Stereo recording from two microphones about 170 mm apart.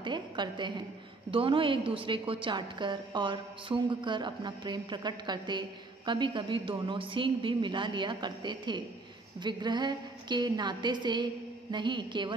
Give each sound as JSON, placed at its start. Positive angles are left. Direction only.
{"t": 0.0, "sound": "a woman's voice", "side_deg": -25}